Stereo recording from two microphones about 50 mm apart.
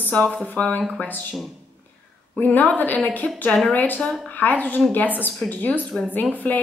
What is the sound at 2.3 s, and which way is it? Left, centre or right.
A woman's voice, left.